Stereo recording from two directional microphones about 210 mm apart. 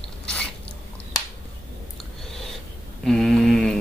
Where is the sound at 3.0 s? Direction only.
Centre (ahead or behind).